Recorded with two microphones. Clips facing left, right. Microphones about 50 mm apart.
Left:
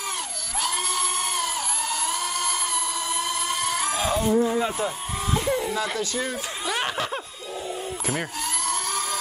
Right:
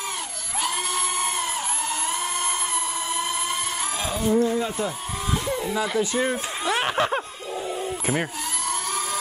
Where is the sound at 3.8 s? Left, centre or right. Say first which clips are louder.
Left 3 dB; centre.